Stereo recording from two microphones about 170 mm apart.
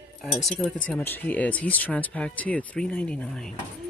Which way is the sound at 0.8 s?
10° left (ahead or behind).